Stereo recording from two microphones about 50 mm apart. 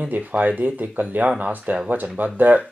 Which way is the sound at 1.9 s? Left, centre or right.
Right.